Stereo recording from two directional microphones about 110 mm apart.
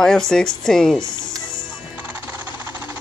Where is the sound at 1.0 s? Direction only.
40° left (ahead or behind).